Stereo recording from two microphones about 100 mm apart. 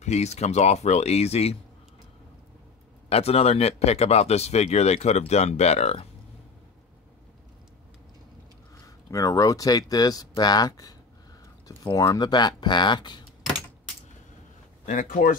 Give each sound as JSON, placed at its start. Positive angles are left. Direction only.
{"t": 0.1, "sound": "speech", "side_deg": 90}
{"t": 3.1, "sound": "speech", "side_deg": 90}
{"t": 8.8, "sound": "speech", "side_deg": 35}